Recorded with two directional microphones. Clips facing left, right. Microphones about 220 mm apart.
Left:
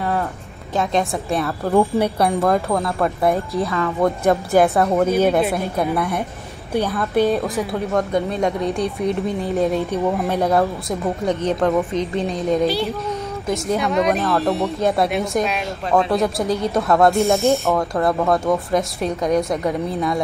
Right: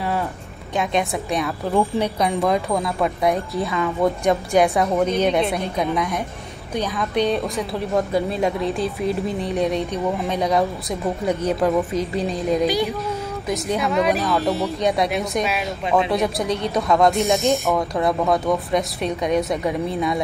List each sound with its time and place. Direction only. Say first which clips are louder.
0.9 s speech: left 1 dB; centre (ahead or behind)
3.6 s speech: left 1 dB; 15° right (ahead or behind)
4.5 s speech: left 2 dB; centre (ahead or behind)
12.6 s speech: even; 15° right (ahead or behind)
13.5 s speech: left 2 dB; centre (ahead or behind)
17.4 s speech: left 2 dB; 15° right (ahead or behind)
18.0 s speech: left 1 dB; centre (ahead or behind)